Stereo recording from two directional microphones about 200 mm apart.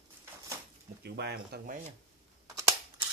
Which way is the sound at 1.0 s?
55° right (ahead or behind).